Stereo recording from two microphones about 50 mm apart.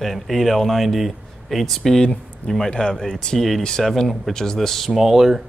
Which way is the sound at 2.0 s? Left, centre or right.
Centre.